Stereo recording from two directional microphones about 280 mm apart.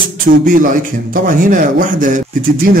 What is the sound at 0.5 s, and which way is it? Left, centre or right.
A man's voice, right.